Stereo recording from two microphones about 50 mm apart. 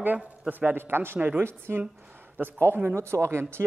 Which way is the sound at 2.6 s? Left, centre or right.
Right.